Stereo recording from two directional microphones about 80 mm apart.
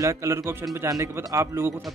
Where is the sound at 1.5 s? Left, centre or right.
Right.